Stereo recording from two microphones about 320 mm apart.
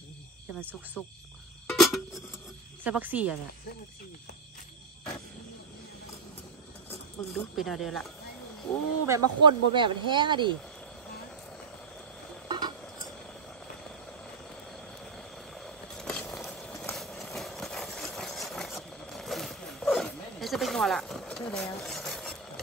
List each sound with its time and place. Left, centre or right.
1.7 s music: centre
2.8 s speech: centre
6.9 s speech: centre
9.0 s speech: centre
12.4 s a sound: centre
14.7 s a sound: centre